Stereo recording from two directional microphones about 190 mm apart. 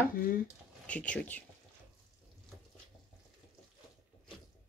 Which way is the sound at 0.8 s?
5° left (ahead or behind).